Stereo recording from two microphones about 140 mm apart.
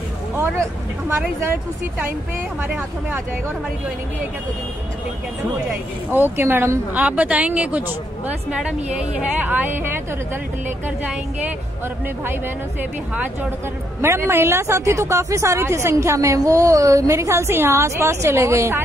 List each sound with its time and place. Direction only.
0.4 s a woman's voice: 20° right (ahead or behind)
6.3 s a woman's voice: 15° right (ahead or behind)
13.1 s a woman's voice: 10° right (ahead or behind)